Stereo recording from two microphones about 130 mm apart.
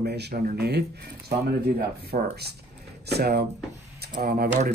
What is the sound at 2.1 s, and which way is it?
Speech, 90° right.